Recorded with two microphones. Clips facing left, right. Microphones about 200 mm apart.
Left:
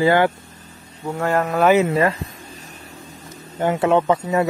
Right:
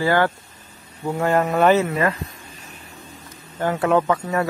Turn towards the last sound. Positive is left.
turn(degrees=25)  # may be behind; listen again after turning